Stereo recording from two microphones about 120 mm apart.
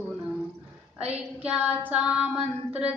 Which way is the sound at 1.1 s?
10° right (ahead or behind).